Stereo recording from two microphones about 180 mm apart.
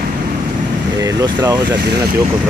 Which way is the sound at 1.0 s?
20° right (ahead or behind).